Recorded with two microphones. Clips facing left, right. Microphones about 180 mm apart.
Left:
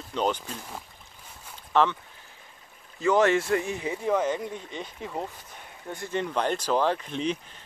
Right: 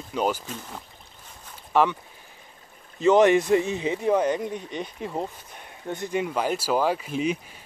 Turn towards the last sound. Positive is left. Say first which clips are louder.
# right 2 dB
turn(degrees=-10)  # may be behind; listen again after turning